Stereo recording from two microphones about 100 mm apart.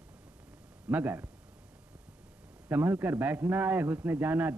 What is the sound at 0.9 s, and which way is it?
Speech, 20° right (ahead or behind).